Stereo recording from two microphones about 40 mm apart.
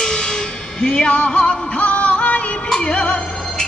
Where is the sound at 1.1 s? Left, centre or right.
Left.